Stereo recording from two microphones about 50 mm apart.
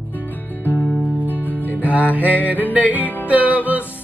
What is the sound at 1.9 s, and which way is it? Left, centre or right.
Music, right.